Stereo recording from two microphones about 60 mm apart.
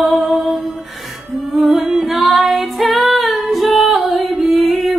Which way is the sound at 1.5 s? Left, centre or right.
Centre.